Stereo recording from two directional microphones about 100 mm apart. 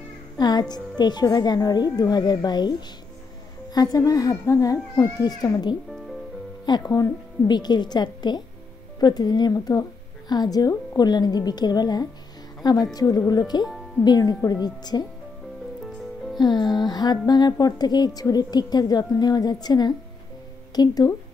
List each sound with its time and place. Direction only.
0.4 s speech: 45° left (ahead or behind)
3.7 s a child's voice: 40° left (ahead or behind)
16.3 s speech: 45° left (ahead or behind)